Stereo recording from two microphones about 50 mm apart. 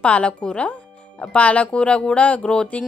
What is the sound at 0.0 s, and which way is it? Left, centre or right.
A woman's voice, left.